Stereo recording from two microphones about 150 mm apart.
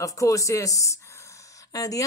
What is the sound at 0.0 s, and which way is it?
Speech, 20° left (ahead or behind).